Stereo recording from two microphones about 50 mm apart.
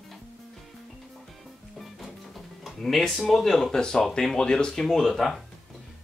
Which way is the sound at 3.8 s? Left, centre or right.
Centre.